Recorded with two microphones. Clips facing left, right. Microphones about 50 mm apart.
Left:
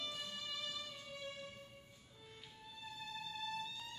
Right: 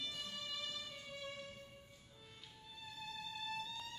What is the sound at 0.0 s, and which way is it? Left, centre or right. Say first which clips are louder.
Music: left 1 dB; centre.